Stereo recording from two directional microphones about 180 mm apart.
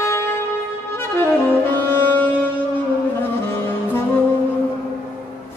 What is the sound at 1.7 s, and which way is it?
Music, 10° left (ahead or behind).